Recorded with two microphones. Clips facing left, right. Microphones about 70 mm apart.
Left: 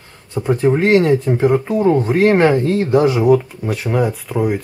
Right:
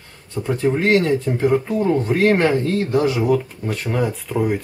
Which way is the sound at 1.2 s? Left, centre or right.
Left.